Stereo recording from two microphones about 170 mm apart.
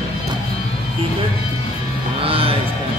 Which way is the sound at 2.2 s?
35° right (ahead or behind).